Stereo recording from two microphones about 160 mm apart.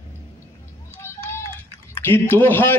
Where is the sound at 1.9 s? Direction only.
15° left (ahead or behind).